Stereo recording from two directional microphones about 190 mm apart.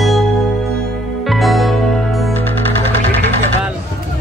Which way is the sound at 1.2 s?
Centre (ahead or behind).